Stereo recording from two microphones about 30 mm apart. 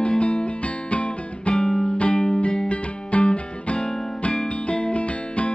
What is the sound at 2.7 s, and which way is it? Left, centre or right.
Music, left.